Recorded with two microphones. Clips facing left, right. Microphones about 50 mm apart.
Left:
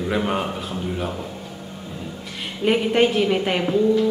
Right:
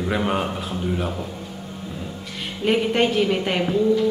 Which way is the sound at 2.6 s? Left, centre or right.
Centre.